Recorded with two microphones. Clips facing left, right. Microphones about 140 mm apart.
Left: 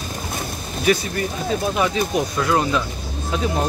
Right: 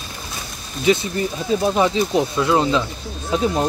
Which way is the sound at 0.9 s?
20° right (ahead or behind).